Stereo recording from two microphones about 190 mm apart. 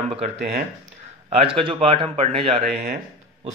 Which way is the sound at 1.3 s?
30° right (ahead or behind).